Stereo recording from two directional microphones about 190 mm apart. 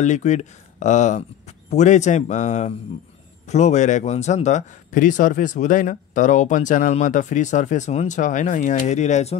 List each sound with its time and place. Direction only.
0.0 s a man's voice: 40° left (ahead or behind)